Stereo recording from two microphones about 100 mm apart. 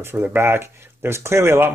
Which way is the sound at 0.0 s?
20° right (ahead or behind).